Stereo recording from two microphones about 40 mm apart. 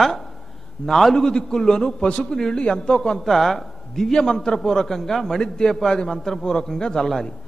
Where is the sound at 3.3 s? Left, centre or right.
Centre.